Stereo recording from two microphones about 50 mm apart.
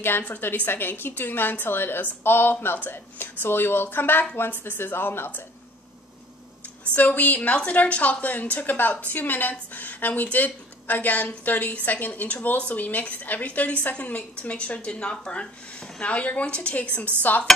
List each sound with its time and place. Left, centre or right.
0.6 s speech: left
7.0 s a woman's voice: left